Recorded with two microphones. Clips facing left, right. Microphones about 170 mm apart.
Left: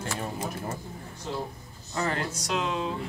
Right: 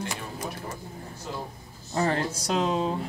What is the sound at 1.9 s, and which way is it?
Speech, 30° right (ahead or behind).